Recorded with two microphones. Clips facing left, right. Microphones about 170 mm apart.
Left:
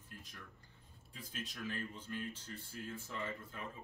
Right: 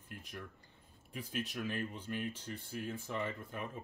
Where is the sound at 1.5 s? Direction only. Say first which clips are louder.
Right 5 dB; 65° right (ahead or behind).